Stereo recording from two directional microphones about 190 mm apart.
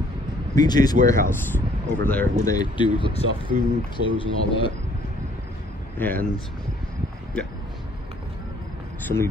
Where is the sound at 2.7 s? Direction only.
25° left (ahead or behind).